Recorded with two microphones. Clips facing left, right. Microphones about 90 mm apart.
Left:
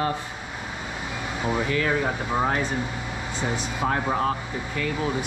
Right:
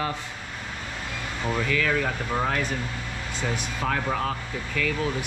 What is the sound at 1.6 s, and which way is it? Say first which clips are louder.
Speech: even; 25° left (ahead or behind).